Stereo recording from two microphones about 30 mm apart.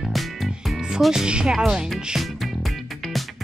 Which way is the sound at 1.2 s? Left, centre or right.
Right.